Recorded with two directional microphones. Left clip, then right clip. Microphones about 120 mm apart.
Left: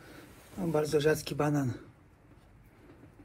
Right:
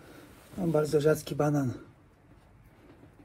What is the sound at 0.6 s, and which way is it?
A man's voice, 25° right (ahead or behind).